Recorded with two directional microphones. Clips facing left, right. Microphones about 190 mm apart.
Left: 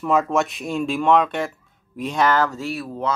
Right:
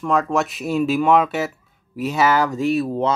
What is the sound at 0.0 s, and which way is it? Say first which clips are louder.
Speech: even; centre (ahead or behind).